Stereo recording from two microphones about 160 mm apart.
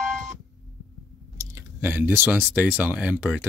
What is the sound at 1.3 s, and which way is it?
Speech, 15° right (ahead or behind).